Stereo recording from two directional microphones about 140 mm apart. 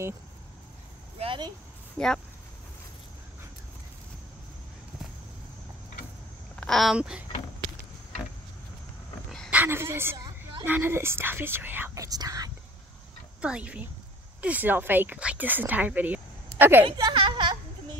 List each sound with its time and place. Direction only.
1.2 s a sound: 35° right (ahead or behind)
2.0 s speech: 5° left (ahead or behind)
6.5 s speech: 5° left (ahead or behind)
9.5 s a woman's voice: 15° right (ahead or behind)
10.1 s a sound: 30° right (ahead or behind)
10.6 s speech: 15° right (ahead or behind)
13.4 s speech: 10° right (ahead or behind)
16.8 s speech: 35° right (ahead or behind)